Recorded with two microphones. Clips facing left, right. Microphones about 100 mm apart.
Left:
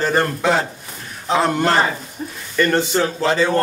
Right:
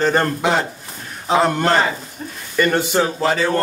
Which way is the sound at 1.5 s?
5° left (ahead or behind).